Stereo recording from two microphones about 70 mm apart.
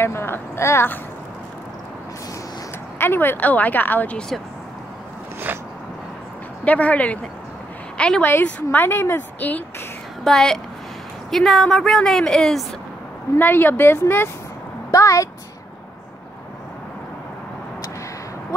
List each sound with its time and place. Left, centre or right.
0.0 s a sound: left
3.0 s speech: left
6.6 s speech: left
8.2 s a woman's voice: left
10.2 s a woman's voice: centre
13.4 s a woman's voice: left
14.9 s a woman's voice: left